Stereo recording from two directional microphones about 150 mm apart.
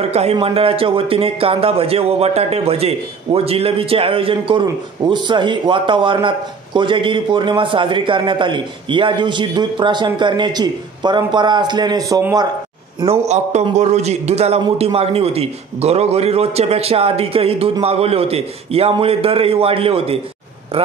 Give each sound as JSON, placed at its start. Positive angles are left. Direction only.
{"t": 0.1, "sound": "speech", "side_deg": -45}
{"t": 13.0, "sound": "a man's voice", "side_deg": -45}